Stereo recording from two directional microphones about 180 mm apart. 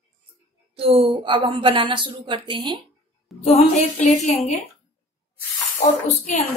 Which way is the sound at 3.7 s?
40° left (ahead or behind).